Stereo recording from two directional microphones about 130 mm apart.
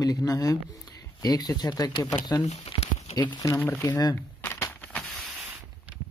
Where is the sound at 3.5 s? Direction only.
20° left (ahead or behind).